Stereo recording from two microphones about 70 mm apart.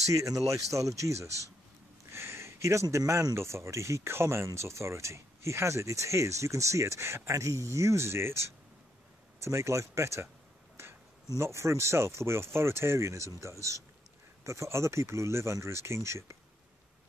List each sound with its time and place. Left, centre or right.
0.1 s speech: right
2.0 s a sound: right
3.3 s speech: right
11.3 s speech: right